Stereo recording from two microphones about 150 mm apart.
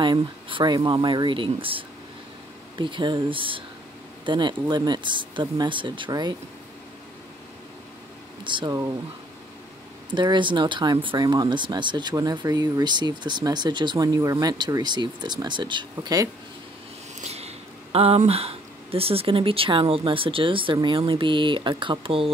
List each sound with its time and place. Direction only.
0.0 s speech: 30° right (ahead or behind)
8.5 s speech: 30° right (ahead or behind)
10.1 s speech: 30° right (ahead or behind)
17.2 s a sound: 45° right (ahead or behind)
17.9 s speech: 40° right (ahead or behind)